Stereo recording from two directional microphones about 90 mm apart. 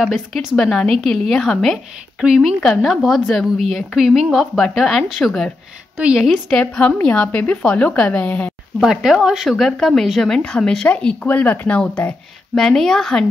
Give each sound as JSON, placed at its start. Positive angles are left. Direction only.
{"t": 0.0, "sound": "a woman's voice", "side_deg": 0}
{"t": 5.9, "sound": "a woman's voice", "side_deg": -10}
{"t": 6.2, "sound": "a woman's voice", "side_deg": 0}
{"t": 6.6, "sound": "speech", "side_deg": 15}
{"t": 8.8, "sound": "speech", "side_deg": -5}
{"t": 12.5, "sound": "a woman's voice", "side_deg": 5}